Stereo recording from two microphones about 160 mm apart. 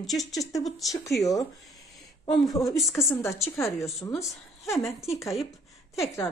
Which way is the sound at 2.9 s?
15° left (ahead or behind).